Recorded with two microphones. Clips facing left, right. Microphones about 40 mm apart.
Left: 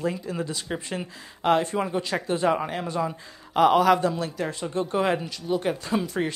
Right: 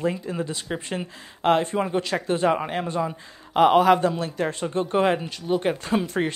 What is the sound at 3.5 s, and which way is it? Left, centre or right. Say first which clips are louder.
Speech: right 2 dB; right.